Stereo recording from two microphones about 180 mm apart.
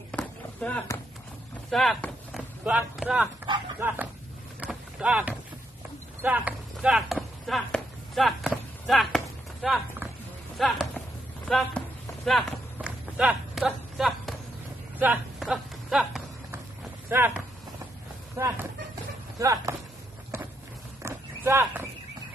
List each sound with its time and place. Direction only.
0.1 s a sound: 5° left (ahead or behind)
1.7 s speech: centre (ahead or behind)
4.6 s rowboat: 5° right (ahead or behind)
6.2 s chop: 10° right (ahead or behind)
10.6 s speech: centre (ahead or behind)
12.3 s run: centre (ahead or behind)
15.0 s speech: 5° right (ahead or behind)
17.1 s speech: 10° right (ahead or behind)
21.0 s horse: 15° right (ahead or behind)